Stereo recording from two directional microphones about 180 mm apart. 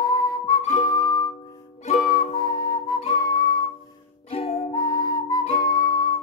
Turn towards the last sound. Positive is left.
turn(degrees=20)  # may be behind; listen again after turning